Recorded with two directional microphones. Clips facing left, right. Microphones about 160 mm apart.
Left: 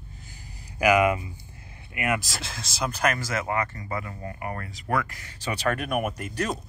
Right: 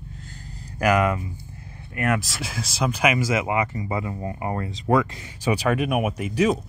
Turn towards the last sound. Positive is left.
turn(degrees=-5)  # may be behind; listen again after turning